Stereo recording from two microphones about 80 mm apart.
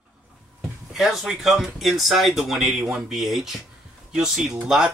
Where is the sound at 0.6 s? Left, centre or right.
Centre.